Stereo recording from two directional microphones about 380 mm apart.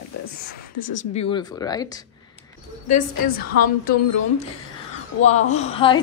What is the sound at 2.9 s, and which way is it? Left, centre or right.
A woman's voice, left.